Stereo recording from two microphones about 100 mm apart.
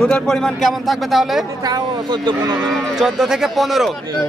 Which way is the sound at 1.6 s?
45° right (ahead or behind).